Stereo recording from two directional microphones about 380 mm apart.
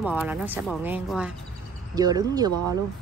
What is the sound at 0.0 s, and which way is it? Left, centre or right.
Speech, centre.